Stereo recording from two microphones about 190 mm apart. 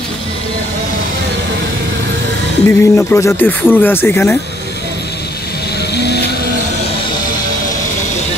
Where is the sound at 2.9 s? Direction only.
10° left (ahead or behind).